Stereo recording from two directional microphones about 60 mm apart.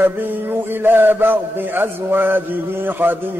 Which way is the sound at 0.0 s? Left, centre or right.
Right.